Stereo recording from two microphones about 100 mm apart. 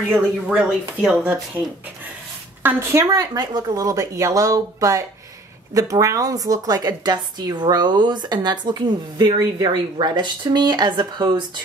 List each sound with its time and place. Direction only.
0.5 s speech: 10° right (ahead or behind)
1.6 s a woman's voice: 25° right (ahead or behind); by 11.4 s 45° right (ahead or behind)